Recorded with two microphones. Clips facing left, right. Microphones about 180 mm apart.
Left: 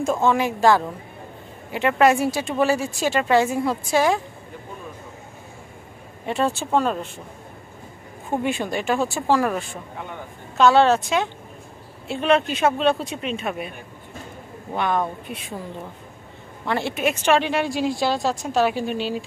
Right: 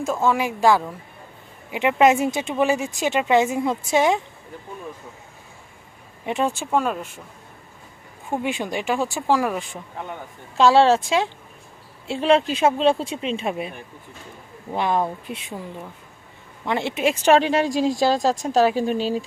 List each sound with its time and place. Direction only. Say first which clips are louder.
0.2 s speech: even; 10° right (ahead or behind)
6.2 s speech: even; 15° right (ahead or behind)
8.4 s speech: left 1 dB; 15° right (ahead or behind)
10.6 s speech: right 1 dB; 25° right (ahead or behind)
14.8 s speech: right 1 dB; 25° right (ahead or behind)
16.6 s speech: right 1 dB; 20° right (ahead or behind)
17.2 s a woman's voice: right 4 dB; 35° right (ahead or behind)